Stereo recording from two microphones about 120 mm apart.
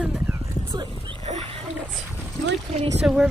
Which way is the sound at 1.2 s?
60° right (ahead or behind).